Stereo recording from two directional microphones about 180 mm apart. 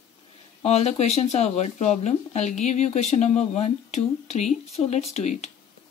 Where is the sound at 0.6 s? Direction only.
35° left (ahead or behind).